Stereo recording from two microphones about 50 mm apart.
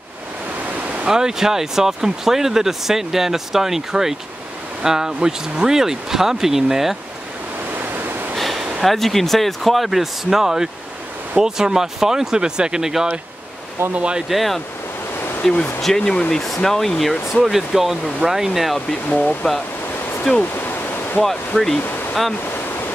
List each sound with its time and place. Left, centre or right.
1.0 s speech: centre
8.4 s a sound: centre
8.8 s speech: centre; by 14.2 s right
14.3 s speech: centre
19.0 s speech: left
20.5 s waterfall: left